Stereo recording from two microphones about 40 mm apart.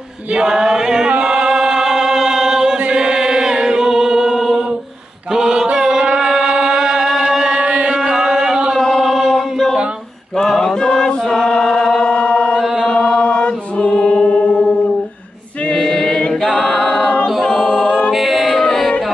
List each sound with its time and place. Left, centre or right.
0.3 s chant: centre
1.2 s music: centre
2.8 s chant: right
7.5 s chant: right
8.3 s a sound: centre
8.7 s singing: centre
10.3 s chant: centre
12.1 s chant: left
12.9 s choir: left
13.9 s a capella: left
15.7 s a capella: centre
17.8 s a capella: left
18.1 s music: centre
18.6 s singing: centre